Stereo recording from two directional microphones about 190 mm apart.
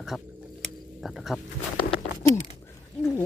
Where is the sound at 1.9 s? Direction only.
30° left (ahead or behind).